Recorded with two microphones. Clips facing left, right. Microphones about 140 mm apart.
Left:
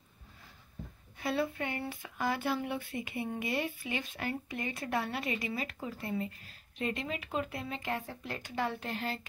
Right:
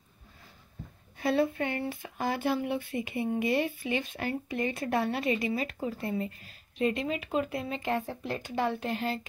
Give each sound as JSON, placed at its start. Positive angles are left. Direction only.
{"t": 1.2, "sound": "speech", "side_deg": -30}
{"t": 6.8, "sound": "speech", "side_deg": -20}